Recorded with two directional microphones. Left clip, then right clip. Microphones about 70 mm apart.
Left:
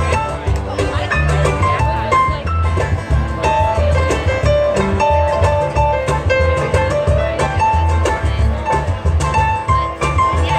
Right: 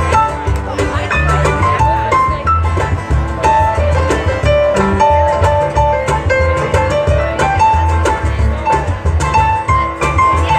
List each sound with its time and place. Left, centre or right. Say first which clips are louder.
1.1 s music: right 4 dB; left
1.5 s music: right 4 dB; right
3.4 s music: right 4 dB; left
6.0 s music: right 2 dB; right
7.1 s music: right 3 dB; left